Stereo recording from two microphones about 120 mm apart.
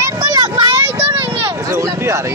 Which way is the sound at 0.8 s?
20° right (ahead or behind).